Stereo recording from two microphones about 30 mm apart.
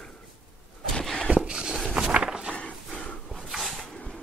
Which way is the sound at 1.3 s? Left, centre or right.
Right.